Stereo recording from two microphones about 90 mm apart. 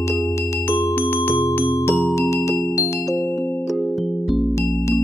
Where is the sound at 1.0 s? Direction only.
20° left (ahead or behind).